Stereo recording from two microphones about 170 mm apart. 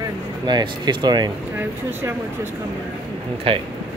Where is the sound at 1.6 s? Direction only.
15° right (ahead or behind).